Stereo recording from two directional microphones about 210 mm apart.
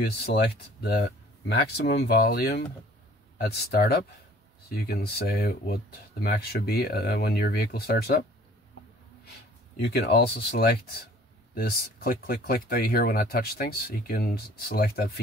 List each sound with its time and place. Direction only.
0.0 s speech: 50° left (ahead or behind)
9.8 s speech: 55° left (ahead or behind)